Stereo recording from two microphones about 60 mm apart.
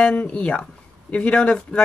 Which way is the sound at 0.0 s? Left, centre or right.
Left.